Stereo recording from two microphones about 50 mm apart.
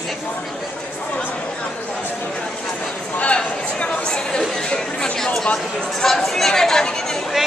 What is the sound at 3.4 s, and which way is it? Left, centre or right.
Chatter, centre.